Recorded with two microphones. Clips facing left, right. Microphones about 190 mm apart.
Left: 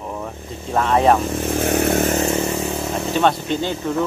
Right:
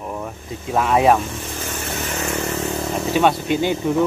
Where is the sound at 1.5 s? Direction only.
65° left (ahead or behind).